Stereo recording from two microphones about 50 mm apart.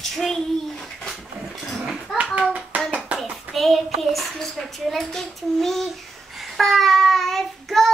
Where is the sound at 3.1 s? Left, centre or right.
Right.